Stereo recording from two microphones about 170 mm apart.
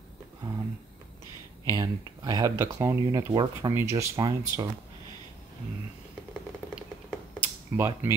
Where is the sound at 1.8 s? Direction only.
20° right (ahead or behind).